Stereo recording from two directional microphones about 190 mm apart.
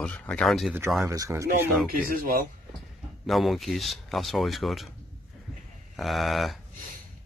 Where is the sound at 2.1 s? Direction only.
50° right (ahead or behind).